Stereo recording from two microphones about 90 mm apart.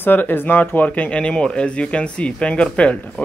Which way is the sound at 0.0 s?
20° left (ahead or behind).